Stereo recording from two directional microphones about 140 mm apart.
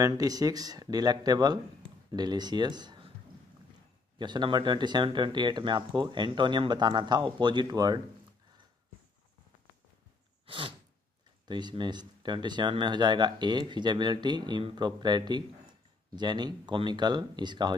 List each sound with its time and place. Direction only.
0.0 s speech: 25° right (ahead or behind)
4.2 s speech: 35° right (ahead or behind)
10.4 s sneeze: 35° right (ahead or behind)
11.4 s speech: 30° right (ahead or behind)